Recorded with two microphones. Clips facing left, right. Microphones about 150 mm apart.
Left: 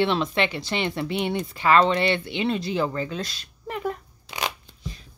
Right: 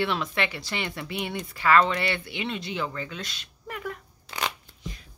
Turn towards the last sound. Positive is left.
turn(degrees=15)  # may be behind; listen again after turning